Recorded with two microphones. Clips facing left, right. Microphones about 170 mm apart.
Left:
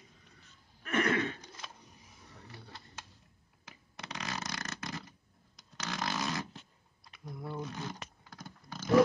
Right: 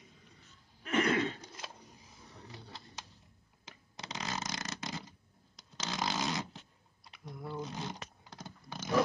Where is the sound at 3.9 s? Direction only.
25° right (ahead or behind).